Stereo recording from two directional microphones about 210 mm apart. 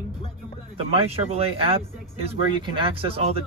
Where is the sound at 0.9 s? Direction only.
30° right (ahead or behind).